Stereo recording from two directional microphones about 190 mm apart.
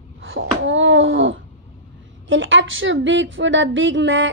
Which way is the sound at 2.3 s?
85° right.